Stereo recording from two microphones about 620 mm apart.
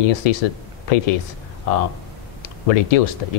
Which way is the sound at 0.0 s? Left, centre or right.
Left.